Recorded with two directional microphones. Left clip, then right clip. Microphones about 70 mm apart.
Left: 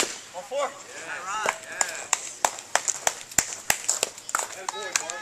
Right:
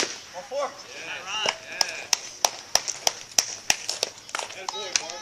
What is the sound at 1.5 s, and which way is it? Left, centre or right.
Clip-clop, right.